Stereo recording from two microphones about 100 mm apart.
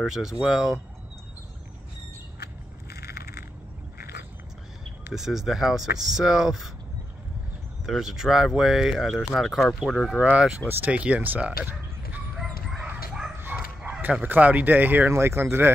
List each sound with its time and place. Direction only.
0.0 s speech: 5° right (ahead or behind)
5.1 s speech: 5° right (ahead or behind)
7.8 s speech: 5° right (ahead or behind)
10.7 s speech: 15° right (ahead or behind)
12.8 s dog: 15° right (ahead or behind)
13.4 s bow-wow: 20° right (ahead or behind)
14.0 s speech: 15° right (ahead or behind)